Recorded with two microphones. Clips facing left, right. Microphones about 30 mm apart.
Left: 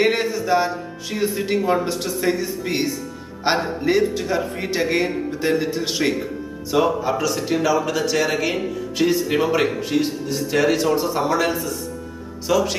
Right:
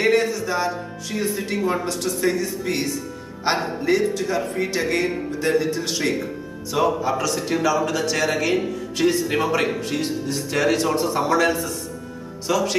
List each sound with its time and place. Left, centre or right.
0.0 s a man's voice: centre